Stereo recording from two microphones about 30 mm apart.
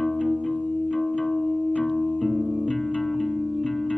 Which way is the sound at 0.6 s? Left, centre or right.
Left.